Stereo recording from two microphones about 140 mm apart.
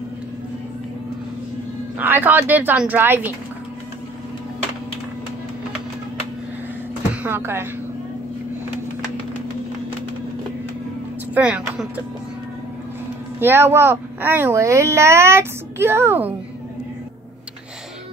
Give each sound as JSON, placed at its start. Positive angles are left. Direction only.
{"t": 2.0, "sound": "speech", "side_deg": -15}
{"t": 7.2, "sound": "speech", "side_deg": -15}
{"t": 11.3, "sound": "speech", "side_deg": -10}
{"t": 13.4, "sound": "speech", "side_deg": -15}